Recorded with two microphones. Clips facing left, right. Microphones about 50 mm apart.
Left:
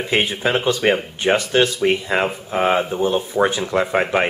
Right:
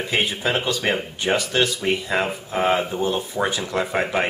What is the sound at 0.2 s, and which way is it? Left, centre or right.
Speech, left.